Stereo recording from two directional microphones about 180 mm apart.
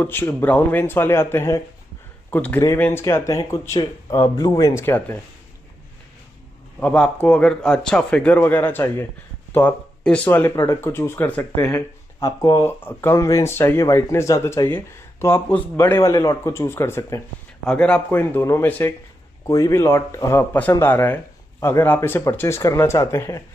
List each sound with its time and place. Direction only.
0.0 s speech: 10° left (ahead or behind)
6.8 s speech: 10° left (ahead or behind)